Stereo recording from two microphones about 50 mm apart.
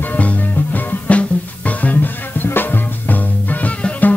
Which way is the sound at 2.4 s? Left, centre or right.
Left.